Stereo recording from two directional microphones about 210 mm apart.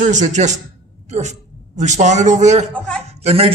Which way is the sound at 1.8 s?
35° right (ahead or behind).